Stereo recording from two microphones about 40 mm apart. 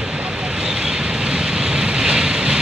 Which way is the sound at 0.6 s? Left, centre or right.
Centre.